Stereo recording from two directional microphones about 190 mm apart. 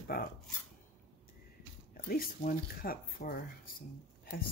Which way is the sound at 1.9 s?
50° left (ahead or behind).